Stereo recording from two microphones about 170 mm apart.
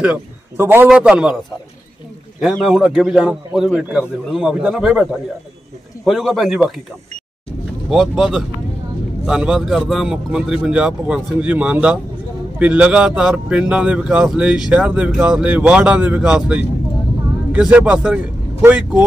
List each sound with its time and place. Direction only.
0.0 s a man's voice: 10° right (ahead or behind)
2.4 s a man's voice: centre (ahead or behind)
6.0 s a man's voice: centre (ahead or behind)
7.9 s a man's voice: centre (ahead or behind)